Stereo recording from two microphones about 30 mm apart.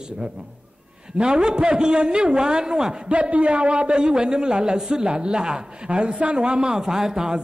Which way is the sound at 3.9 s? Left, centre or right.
Right.